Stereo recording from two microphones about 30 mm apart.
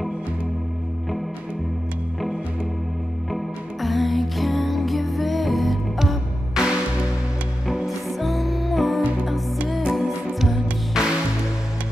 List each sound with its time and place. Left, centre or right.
3.3 s music: centre
6.6 s music: right
7.8 s music: centre
10.9 s music: right